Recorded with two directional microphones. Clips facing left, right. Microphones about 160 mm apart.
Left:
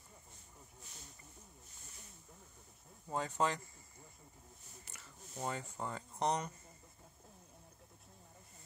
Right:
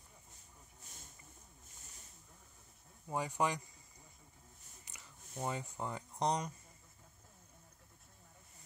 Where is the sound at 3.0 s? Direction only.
15° right (ahead or behind).